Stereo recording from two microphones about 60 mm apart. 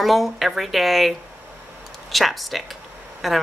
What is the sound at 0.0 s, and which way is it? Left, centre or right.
Speech, centre.